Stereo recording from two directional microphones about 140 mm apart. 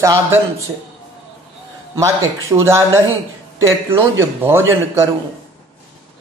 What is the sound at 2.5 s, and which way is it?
Speech, 20° right (ahead or behind).